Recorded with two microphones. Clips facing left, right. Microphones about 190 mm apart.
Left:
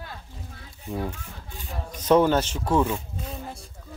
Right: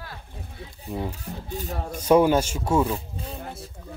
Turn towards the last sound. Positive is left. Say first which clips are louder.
# right 1 dB
turn(degrees=-5)  # may be behind; listen again after turning